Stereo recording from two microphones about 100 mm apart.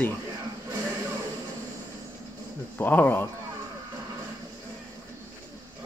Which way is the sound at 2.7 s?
20° left (ahead or behind).